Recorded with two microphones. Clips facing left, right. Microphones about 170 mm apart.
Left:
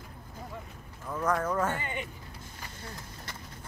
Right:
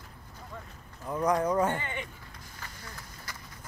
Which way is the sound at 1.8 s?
15° left (ahead or behind).